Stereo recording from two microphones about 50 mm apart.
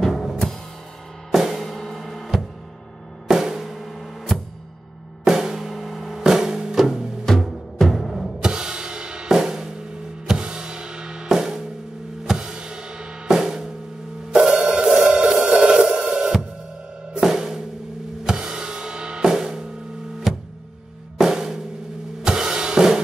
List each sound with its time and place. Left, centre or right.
0.0 s music: centre
1.3 s drum: centre
5.2 s music: centre
7.2 s music: centre
8.4 s music: centre
17.2 s drum kit: centre
18.2 s music: centre
21.2 s drum: centre
22.2 s drum kit: centre